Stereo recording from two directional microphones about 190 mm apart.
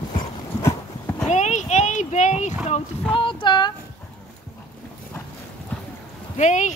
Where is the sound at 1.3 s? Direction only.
40° left (ahead or behind).